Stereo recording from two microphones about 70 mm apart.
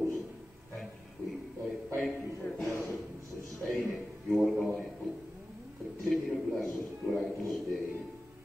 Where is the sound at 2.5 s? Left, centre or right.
Centre.